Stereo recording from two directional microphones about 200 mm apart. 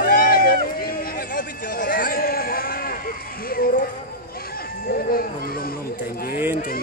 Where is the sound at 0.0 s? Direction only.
45° left (ahead or behind).